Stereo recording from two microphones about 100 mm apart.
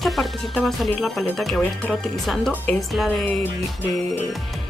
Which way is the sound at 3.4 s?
20° left (ahead or behind).